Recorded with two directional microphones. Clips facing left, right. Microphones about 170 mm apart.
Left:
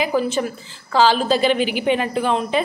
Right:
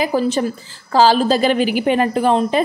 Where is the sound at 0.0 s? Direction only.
35° right (ahead or behind).